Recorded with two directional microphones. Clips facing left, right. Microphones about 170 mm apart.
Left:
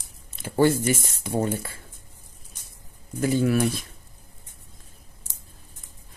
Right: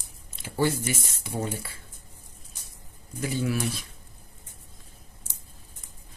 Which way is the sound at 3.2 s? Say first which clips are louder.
Left 7 dB; 50° left (ahead or behind).